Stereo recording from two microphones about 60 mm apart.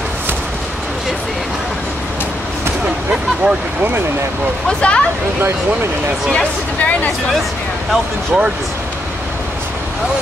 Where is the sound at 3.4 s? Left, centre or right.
Right.